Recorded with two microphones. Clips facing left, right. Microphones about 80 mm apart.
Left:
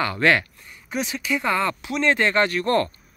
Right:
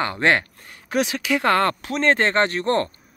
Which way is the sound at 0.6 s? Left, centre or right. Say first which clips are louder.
Right 6 dB; right.